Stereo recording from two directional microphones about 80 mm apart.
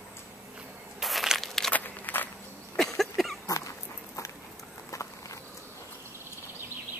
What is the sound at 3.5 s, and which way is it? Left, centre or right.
Dog, left.